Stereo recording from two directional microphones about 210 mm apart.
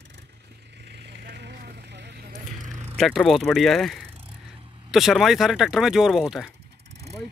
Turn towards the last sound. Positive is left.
turn(degrees=0)  # may be behind; listen again after turning